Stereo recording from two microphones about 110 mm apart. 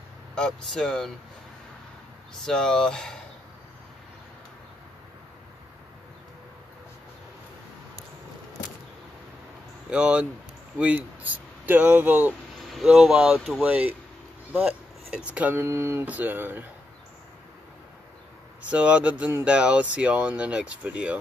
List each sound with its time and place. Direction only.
0.3 s speech: 5° left (ahead or behind)
2.4 s speech: 5° left (ahead or behind)
9.8 s speech: 10° right (ahead or behind)
12.5 s speech: centre (ahead or behind)
15.5 s mantra: 25° right (ahead or behind)
18.7 s speech: 10° right (ahead or behind)